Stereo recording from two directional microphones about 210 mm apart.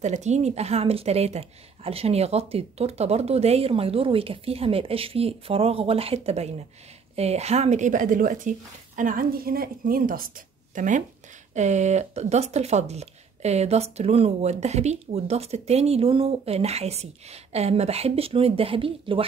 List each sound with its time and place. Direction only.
0.0 s a woman's voice: 35° right (ahead or behind)